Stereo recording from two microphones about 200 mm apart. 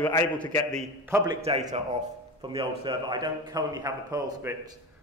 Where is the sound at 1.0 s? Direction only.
10° right (ahead or behind).